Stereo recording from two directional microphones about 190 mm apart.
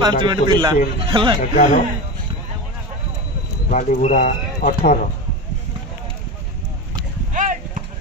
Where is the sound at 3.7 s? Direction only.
40° left (ahead or behind).